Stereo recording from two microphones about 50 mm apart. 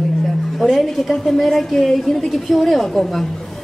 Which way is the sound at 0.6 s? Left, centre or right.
Centre.